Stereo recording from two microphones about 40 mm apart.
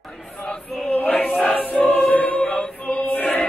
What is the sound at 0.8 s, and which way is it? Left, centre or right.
Choir, left.